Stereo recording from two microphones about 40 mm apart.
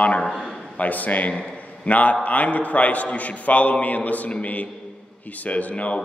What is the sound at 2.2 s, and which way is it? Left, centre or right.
A man's voice, left.